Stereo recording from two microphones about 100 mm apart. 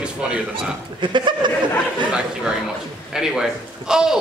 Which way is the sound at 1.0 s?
50° right (ahead or behind).